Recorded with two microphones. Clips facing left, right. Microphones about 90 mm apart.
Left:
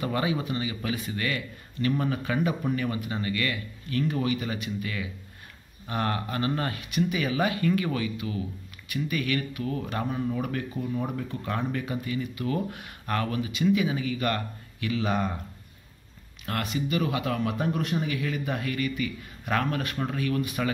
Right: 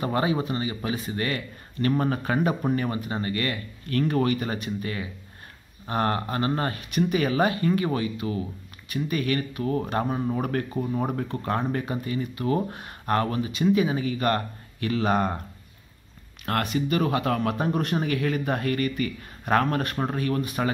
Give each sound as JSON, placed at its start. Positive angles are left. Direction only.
{"t": 0.0, "sound": "speech", "side_deg": -35}
{"t": 3.8, "sound": "speech", "side_deg": -55}
{"t": 16.4, "sound": "speech", "side_deg": -50}